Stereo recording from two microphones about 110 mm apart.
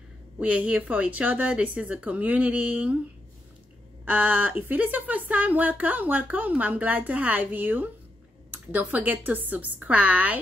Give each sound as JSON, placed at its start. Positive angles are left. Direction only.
{"t": 0.4, "sound": "speech", "side_deg": -15}
{"t": 4.0, "sound": "speech", "side_deg": -15}